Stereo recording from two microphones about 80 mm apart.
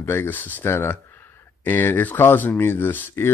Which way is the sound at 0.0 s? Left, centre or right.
Left.